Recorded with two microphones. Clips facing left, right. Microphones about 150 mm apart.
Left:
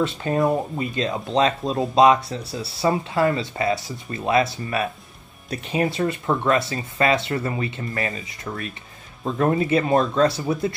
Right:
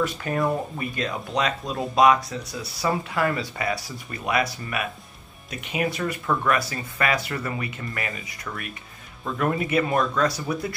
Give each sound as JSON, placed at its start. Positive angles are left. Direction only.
{"t": 0.0, "sound": "speech", "side_deg": 25}